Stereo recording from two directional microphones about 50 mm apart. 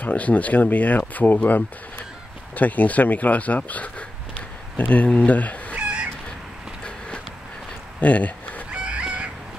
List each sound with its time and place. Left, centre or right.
0.0 s speech: left
5.8 s chicken: right
8.0 s a sound: left
8.7 s chicken: right